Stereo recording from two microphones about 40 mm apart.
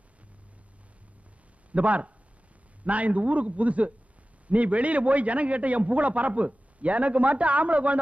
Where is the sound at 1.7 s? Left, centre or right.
Right.